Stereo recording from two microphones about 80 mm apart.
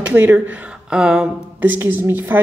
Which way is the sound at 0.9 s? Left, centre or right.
Centre.